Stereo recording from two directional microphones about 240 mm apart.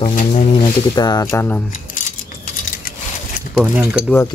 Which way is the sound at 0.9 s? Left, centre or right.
Centre.